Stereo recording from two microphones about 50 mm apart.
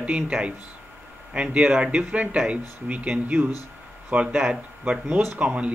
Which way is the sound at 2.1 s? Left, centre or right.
Right.